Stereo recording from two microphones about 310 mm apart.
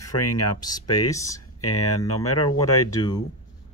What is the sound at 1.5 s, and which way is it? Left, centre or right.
Speech, left.